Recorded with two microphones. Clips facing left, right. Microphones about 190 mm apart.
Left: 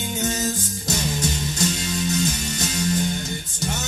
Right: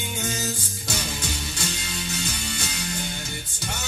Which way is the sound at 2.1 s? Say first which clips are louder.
Left 7 dB; 40° left (ahead or behind).